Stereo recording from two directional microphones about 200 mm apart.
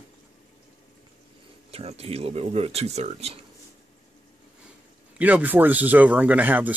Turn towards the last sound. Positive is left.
turn(degrees=-10)  # may be behind; listen again after turning